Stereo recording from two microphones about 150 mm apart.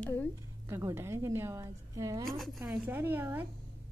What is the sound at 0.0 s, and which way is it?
Speech, 10° left (ahead or behind).